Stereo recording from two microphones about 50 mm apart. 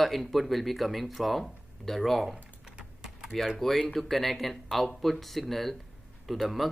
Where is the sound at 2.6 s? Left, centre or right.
Centre.